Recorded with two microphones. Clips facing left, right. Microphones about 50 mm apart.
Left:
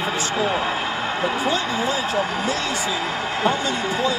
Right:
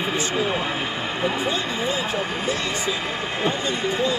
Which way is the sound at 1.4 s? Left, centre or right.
Right.